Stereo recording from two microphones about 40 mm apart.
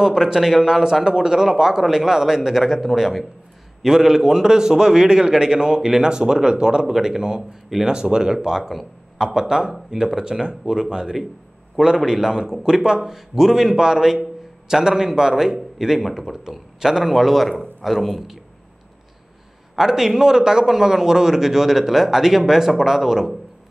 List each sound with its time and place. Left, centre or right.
0.0 s a man's voice: centre
0.8 s a man's voice: centre
16.0 s a man's voice: centre
19.8 s a man's voice: centre